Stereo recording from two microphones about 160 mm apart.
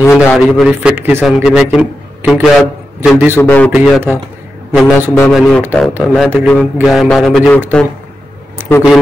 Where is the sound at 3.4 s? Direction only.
10° left (ahead or behind).